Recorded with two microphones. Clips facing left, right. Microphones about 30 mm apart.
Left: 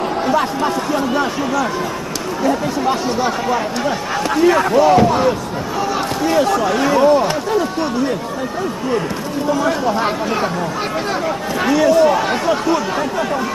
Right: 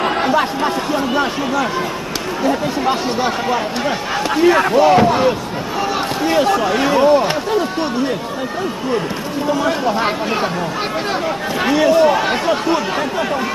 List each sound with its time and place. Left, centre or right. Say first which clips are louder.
0.3 s speech: even; centre
9.5 s speech: even; centre
11.6 s speech: even; centre